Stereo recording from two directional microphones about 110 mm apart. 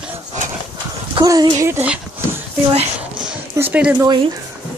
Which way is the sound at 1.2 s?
35° right (ahead or behind).